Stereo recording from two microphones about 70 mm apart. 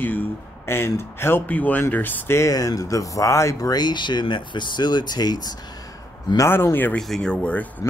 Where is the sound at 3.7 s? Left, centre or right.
Left.